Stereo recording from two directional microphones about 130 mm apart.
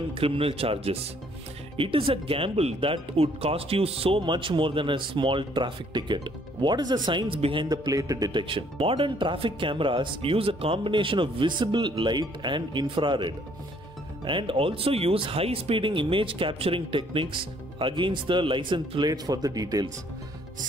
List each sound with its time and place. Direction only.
0.1 s speech: 45° right (ahead or behind); by 19.9 s 30° right (ahead or behind)